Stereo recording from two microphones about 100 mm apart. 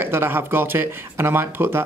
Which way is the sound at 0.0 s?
20° right (ahead or behind).